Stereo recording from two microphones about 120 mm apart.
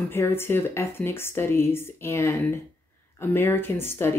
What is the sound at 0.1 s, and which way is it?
Speech, 20° left (ahead or behind).